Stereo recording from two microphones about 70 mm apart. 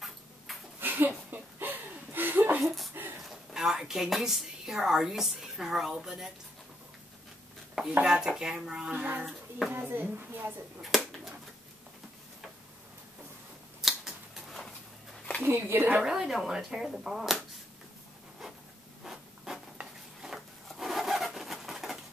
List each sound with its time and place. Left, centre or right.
0.7 s chuckle: right
2.6 s a sound: centre
2.9 s a sound: right
3.2 s speech: centre
8.0 s speech: centre
9.8 s speech: right
10.8 s finger snapping: centre
13.7 s a sound: centre
15.4 s speech: right
16.0 s speech: centre
19.0 s a sound: centre
20.2 s wood: centre